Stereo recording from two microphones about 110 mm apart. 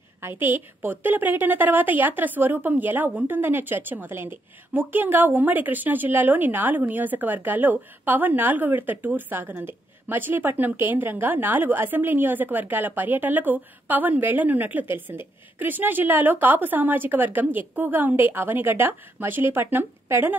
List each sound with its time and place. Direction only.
0.2 s a woman's voice: 20° right (ahead or behind)